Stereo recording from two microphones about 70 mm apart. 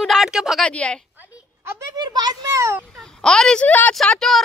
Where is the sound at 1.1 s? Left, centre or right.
Right.